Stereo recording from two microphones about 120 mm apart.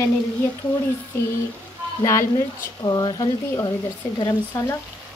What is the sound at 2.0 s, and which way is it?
Speech, 25° left (ahead or behind).